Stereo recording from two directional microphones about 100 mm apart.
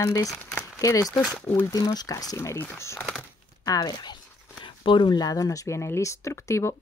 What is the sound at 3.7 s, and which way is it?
Speech, 45° left (ahead or behind).